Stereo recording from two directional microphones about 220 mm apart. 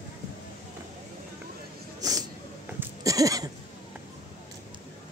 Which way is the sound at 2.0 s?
15° right (ahead or behind).